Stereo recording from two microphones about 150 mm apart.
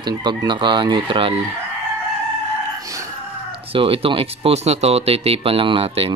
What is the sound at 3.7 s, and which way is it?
Speech, 40° right (ahead or behind).